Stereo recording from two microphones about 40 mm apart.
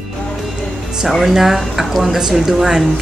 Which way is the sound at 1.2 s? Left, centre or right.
Centre.